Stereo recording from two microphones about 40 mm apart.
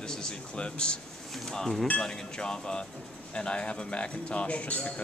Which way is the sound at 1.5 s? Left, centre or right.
Centre.